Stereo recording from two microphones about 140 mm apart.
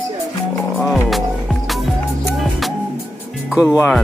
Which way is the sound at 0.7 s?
Centre (ahead or behind).